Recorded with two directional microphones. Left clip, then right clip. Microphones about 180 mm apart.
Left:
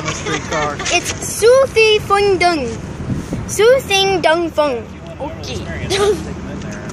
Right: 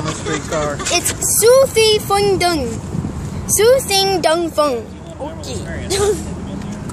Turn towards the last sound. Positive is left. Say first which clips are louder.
# left 2 dB
turn(degrees=5)  # may be behind; listen again after turning